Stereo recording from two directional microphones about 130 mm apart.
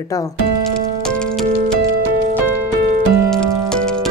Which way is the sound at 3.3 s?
5° left (ahead or behind).